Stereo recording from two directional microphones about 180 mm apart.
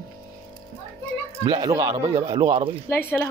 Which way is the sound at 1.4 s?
20° right (ahead or behind).